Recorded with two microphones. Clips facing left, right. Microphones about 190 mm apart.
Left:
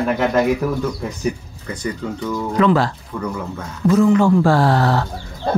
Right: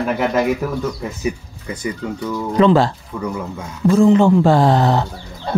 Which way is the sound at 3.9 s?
25° right (ahead or behind).